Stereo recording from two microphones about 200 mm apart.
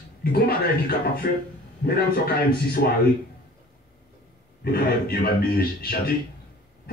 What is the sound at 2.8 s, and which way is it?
Speech, 50° left (ahead or behind).